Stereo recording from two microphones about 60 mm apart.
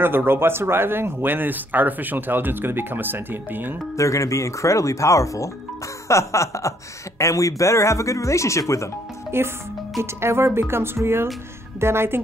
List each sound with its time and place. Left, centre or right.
0.0 s speech: right
3.9 s speech: left
9.3 s speech: right